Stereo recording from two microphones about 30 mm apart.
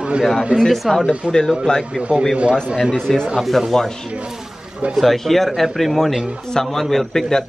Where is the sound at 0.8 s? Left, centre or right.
Centre.